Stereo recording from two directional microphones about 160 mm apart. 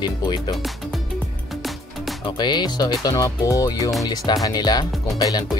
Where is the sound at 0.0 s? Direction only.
25° left (ahead or behind).